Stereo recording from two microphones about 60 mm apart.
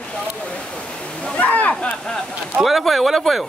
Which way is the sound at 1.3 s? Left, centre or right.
Left.